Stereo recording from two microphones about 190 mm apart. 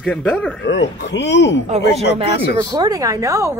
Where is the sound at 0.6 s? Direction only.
70° left (ahead or behind).